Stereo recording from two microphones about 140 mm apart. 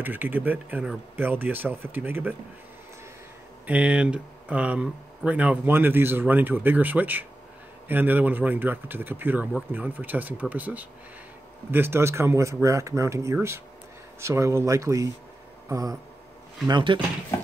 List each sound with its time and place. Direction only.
0.0 s speech: 15° right (ahead or behind)
3.6 s speech: 10° right (ahead or behind); by 17.0 s 35° right (ahead or behind)